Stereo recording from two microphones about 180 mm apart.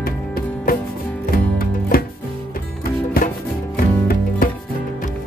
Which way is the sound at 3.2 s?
55° left (ahead or behind).